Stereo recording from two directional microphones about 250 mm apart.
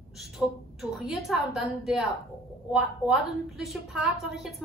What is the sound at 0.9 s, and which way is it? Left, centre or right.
Speech, centre.